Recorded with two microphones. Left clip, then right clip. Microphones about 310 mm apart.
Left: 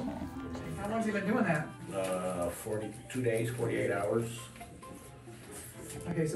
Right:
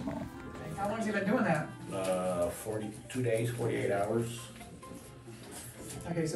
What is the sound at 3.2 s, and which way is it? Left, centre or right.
Speech, centre.